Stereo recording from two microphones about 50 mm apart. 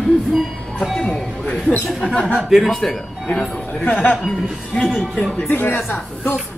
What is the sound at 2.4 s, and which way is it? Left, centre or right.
Speech, centre.